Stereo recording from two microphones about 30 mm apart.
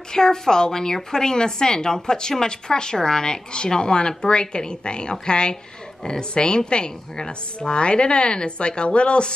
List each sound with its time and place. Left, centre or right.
0.1 s a woman's voice: left